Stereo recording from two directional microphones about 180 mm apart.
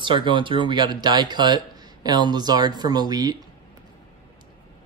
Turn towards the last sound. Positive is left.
turn(degrees=-20)  # may be behind; listen again after turning